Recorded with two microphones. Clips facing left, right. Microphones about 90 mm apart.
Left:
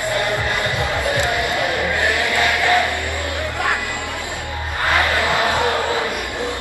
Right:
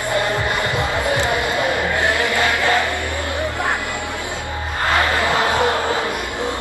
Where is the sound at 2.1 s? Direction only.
15° left (ahead or behind).